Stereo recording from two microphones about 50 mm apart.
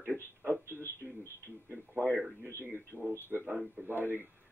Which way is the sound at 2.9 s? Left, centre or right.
Right.